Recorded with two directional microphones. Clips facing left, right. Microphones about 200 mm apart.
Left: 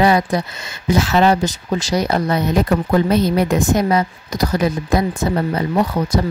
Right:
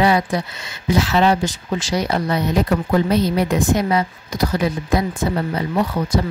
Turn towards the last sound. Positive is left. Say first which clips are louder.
# left 2 dB
turn(degrees=40)  # may be behind; listen again after turning